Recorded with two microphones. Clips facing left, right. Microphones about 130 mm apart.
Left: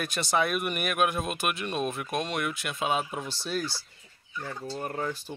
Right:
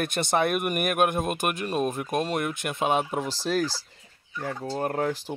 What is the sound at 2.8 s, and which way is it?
Speech, 55° right (ahead or behind).